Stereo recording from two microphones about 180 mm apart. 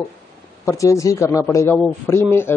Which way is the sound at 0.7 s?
15° left (ahead or behind).